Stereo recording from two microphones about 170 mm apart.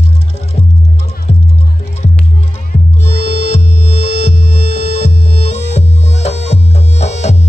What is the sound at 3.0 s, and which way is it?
Music, 40° left (ahead or behind).